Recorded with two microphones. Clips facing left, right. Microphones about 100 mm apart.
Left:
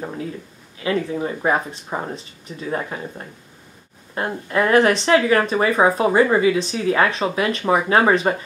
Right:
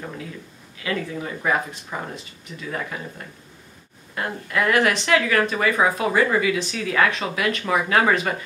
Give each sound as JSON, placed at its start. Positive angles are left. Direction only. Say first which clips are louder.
{"t": 0.8, "sound": "speech", "louder": "left 5 dB", "side_deg": 30}